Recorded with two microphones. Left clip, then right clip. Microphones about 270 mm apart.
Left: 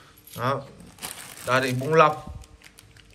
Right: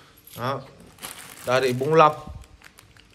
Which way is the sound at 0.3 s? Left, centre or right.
Centre.